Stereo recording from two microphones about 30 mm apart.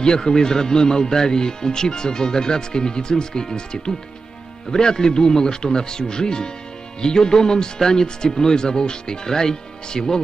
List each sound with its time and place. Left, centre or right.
0.0 s speech: left